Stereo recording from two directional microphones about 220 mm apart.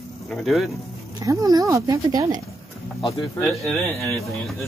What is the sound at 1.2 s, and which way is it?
Speech, 15° right (ahead or behind).